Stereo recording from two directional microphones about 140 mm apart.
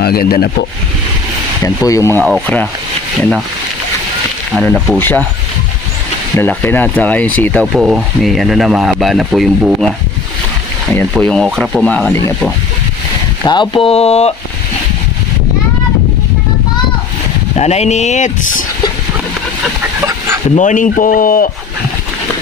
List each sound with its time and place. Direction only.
0.1 s speech: 90° left
1.6 s speech: 25° left (ahead or behind)
3.2 s speech: centre (ahead or behind)
4.9 s speech: 15° left (ahead or behind)
6.3 s speech: 15° left (ahead or behind)
7.8 s speech: 5° right (ahead or behind)
11.1 s speech: 5° left (ahead or behind)
11.9 s speech: 10° left (ahead or behind)
13.5 s speech: 35° left (ahead or behind)
17.6 s speech: 50° left (ahead or behind)
20.5 s speech: 65° left (ahead or behind); by 21.5 s 90° left